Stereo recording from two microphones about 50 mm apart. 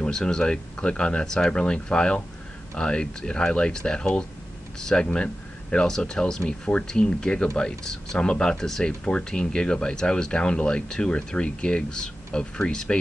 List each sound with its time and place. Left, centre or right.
0.0 s speech: centre